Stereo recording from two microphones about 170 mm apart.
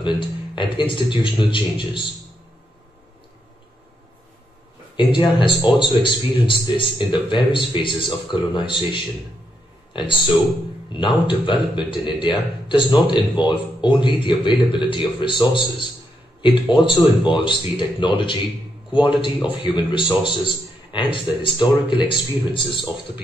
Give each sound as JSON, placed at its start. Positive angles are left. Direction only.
{"t": 0.0, "sound": "speech", "side_deg": 30}
{"t": 4.9, "sound": "speech", "side_deg": 30}